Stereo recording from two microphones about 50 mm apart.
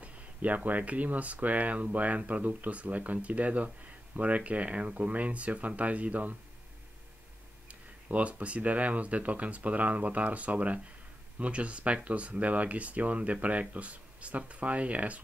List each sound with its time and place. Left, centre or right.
0.0 s a sound: right
0.7 s speech: right
7.6 s speech: right